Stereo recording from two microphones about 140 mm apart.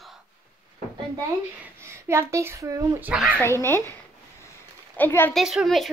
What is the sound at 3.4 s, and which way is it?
Speech, 20° left (ahead or behind).